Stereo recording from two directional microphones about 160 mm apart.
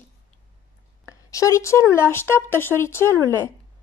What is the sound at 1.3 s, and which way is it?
A woman's voice, 20° left (ahead or behind).